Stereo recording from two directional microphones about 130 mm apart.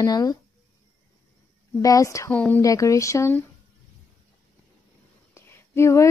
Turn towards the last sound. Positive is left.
turn(degrees=20)  # may be behind; listen again after turning